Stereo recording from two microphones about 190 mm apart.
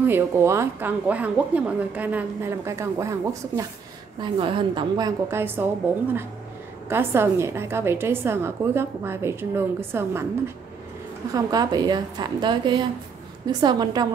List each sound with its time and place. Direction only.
0.0 s a woman's voice: 15° right (ahead or behind)
4.2 s a woman's voice: 25° right (ahead or behind)
6.9 s a woman's voice: 10° right (ahead or behind)